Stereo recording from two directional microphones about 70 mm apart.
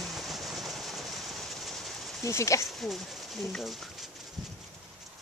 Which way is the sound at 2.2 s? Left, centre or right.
Left.